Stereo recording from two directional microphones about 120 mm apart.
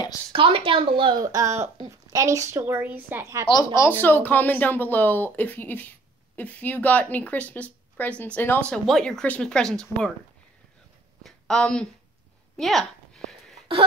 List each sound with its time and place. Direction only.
0.3 s speech: 50° right (ahead or behind)
1.2 s a woman's voice: 30° right (ahead or behind)
3.7 s a woman's voice: 20° left (ahead or behind)
8.6 s speech: 5° left (ahead or behind)
11.2 s speech: 5° left (ahead or behind)
12.5 s a sound: centre (ahead or behind)